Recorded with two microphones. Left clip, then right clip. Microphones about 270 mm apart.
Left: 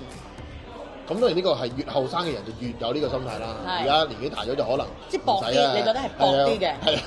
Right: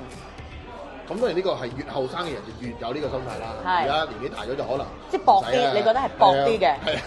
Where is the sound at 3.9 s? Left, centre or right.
Left.